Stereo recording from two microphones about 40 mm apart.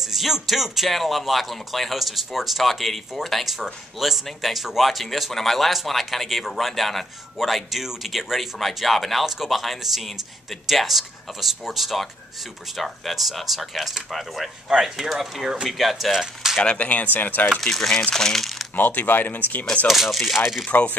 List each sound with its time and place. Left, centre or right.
0.0 s speech: centre
14.7 s speech: centre
16.1 s speech: centre
16.7 s speech: left
17.6 s speech: centre
18.8 s speech: left
19.9 s speech: centre
20.6 s speech: left